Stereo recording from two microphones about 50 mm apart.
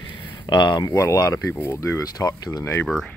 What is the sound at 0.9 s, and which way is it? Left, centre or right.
Speech, left.